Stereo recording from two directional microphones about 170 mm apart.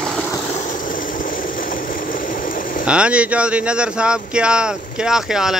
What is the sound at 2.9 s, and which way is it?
Speech, 5° right (ahead or behind).